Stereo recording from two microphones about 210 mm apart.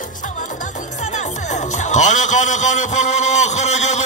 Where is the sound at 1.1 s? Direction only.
35° left (ahead or behind).